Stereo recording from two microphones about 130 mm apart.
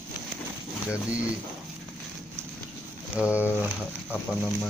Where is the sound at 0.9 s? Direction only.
10° right (ahead or behind).